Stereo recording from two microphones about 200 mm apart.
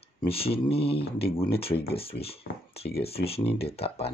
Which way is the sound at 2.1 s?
50° left (ahead or behind).